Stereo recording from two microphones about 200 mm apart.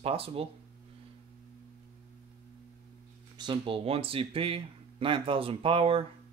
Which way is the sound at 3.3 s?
25° right (ahead or behind).